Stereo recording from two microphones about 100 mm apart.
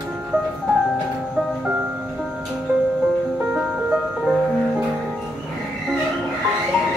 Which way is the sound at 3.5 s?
10° right (ahead or behind).